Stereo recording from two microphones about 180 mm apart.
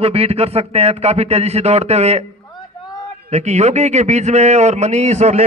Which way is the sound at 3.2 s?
40° right (ahead or behind).